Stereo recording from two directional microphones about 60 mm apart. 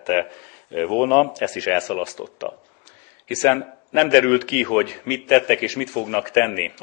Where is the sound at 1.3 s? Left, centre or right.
Centre.